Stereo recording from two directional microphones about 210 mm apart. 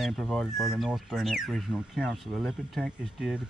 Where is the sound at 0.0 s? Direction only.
Centre (ahead or behind).